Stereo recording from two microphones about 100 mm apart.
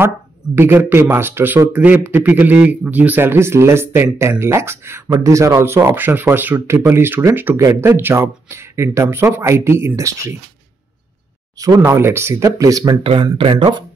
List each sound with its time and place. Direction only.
0.6 s speech: 25° right (ahead or behind)
11.8 s speech: 20° right (ahead or behind)
12.4 s speech: 35° right (ahead or behind)
13.0 s speech: 60° right (ahead or behind)